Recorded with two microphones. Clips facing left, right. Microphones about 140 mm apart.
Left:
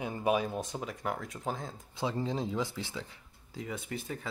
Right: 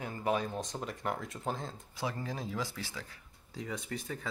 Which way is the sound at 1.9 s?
20° left (ahead or behind).